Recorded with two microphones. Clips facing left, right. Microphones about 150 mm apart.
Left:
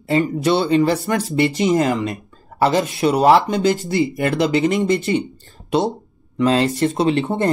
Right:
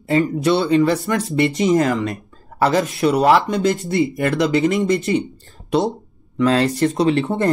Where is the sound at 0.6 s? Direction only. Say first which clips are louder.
Even; 30° left (ahead or behind).